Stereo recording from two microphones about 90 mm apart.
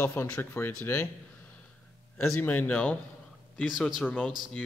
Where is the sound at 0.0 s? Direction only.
25° left (ahead or behind).